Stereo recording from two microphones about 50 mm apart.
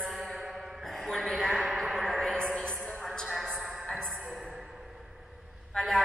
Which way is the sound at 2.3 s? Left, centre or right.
Centre.